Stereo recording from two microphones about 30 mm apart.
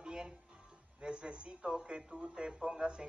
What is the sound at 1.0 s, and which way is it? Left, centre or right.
A man's voice, right.